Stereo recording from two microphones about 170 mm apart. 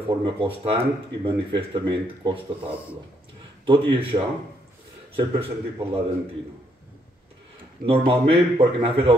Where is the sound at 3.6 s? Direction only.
30° right (ahead or behind).